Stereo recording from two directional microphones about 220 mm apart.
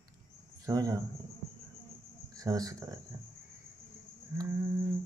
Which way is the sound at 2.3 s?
15° right (ahead or behind).